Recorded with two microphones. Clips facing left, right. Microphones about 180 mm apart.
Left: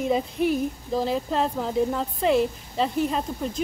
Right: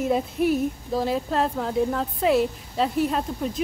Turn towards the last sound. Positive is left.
turn(degrees=0)  # may be behind; listen again after turning